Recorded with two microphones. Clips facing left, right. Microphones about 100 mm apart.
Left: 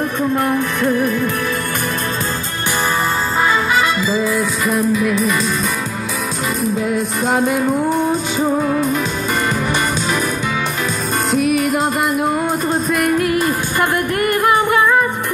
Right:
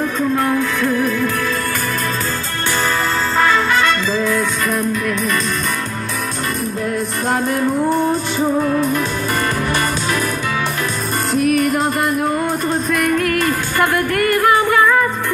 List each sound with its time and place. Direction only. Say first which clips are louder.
0.5 s music: even; 20° left (ahead or behind)
3.8 s music: even; 10° left (ahead or behind)
6.6 s music: left 5 dB; 5° left (ahead or behind)
11.4 s music: right 1 dB; 5° left (ahead or behind); by 15.0 s 20° left (ahead or behind)